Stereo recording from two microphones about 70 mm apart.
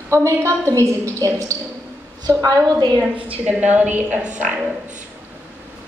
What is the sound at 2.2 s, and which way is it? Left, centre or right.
Speech, right.